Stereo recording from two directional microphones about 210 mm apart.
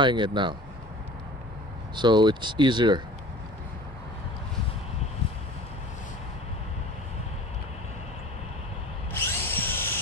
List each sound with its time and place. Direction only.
0.0 s speech: 20° right (ahead or behind)
2.0 s speech: 20° right (ahead or behind)
9.1 s drill: 10° left (ahead or behind)